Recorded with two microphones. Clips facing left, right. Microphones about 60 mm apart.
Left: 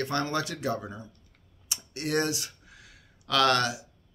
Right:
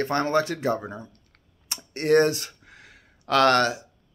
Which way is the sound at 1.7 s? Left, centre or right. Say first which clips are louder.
Right 9 dB; right.